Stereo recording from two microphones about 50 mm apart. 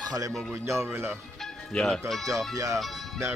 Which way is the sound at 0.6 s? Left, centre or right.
Right.